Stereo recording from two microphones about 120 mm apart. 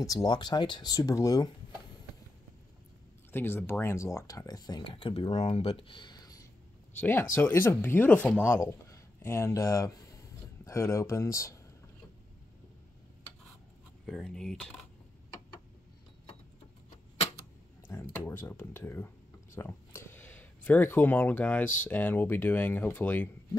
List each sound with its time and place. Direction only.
0.0 s speech: 30° left (ahead or behind)
3.3 s speech: 20° left (ahead or behind); by 5.3 s 45° left (ahead or behind)
5.3 s speech: 65° left (ahead or behind); by 6.4 s 30° left (ahead or behind)
7.0 s speech: 15° left (ahead or behind)
14.0 s speech: centre (ahead or behind)
17.8 s speech: 20° left (ahead or behind)